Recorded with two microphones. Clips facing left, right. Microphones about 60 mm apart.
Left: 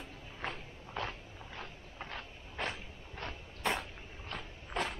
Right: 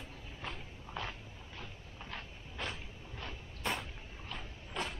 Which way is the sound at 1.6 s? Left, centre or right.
Left.